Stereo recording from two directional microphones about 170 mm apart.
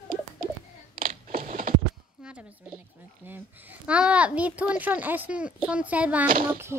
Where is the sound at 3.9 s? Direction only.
5° right (ahead or behind).